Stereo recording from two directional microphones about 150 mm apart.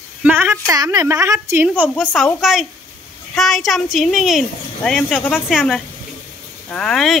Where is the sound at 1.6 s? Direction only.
10° right (ahead or behind); by 5.4 s 10° left (ahead or behind).